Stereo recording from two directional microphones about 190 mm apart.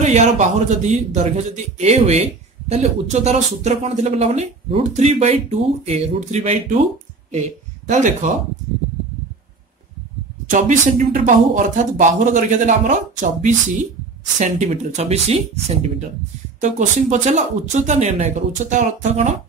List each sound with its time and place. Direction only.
0.0 s speech: 35° right (ahead or behind)
7.9 s speech: 40° right (ahead or behind)
10.5 s speech: 45° right (ahead or behind)